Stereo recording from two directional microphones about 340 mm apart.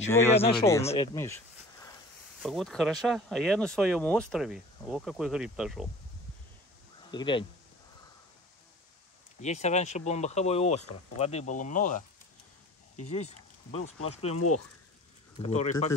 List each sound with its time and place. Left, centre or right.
0.1 s speech: centre
7.1 s speech: centre
9.4 s speech: centre
13.1 s speech: centre